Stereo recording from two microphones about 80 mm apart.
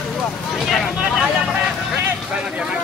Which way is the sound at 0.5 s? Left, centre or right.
Centre.